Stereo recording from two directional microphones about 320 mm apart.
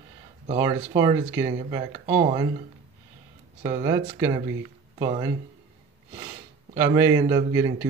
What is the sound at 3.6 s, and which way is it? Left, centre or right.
Speech, centre.